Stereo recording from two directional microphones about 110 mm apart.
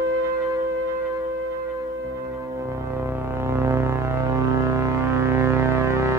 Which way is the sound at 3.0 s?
25° right (ahead or behind).